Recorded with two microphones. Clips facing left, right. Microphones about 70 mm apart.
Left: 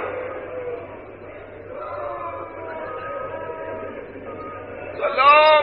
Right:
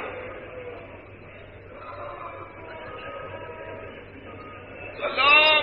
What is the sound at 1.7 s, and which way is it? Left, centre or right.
Choir, left.